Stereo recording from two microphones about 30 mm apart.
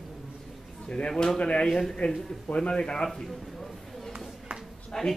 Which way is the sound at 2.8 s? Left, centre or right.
Left.